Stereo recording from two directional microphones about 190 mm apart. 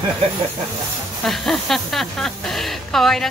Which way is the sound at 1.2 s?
Centre (ahead or behind).